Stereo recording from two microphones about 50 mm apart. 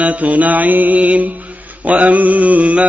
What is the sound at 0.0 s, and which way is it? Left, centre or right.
Mantra, right.